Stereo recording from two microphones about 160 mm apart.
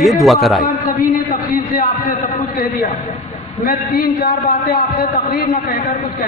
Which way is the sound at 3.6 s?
65° left (ahead or behind).